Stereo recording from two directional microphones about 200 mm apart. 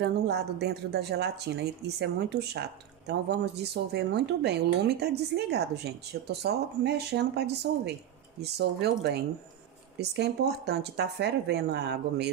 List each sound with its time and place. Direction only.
0.0 s speech: 55° right (ahead or behind)